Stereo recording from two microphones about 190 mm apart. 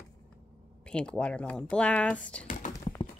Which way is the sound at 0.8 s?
5° left (ahead or behind).